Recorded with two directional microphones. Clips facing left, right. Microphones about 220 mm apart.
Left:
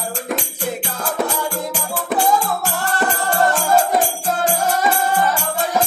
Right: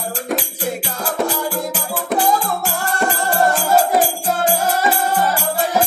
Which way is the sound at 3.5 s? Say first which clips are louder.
Right 1 dB; 5° right (ahead or behind).